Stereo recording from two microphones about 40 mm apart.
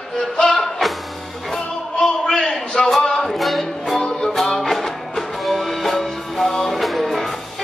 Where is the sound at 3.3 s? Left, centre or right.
Centre.